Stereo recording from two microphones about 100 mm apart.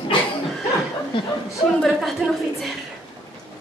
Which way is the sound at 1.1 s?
60° left (ahead or behind).